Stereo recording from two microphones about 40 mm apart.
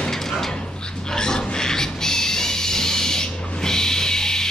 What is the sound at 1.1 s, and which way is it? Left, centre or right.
Music, centre.